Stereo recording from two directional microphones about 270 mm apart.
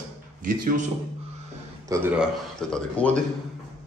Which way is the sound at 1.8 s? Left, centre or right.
Centre.